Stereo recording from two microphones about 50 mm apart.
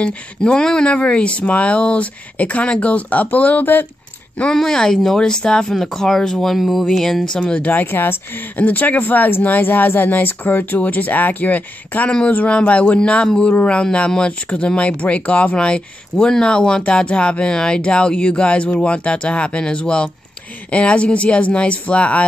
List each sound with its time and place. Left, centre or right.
0.0 s speech: centre; by 3.8 s left
4.5 s speech: centre
7.7 s speech: left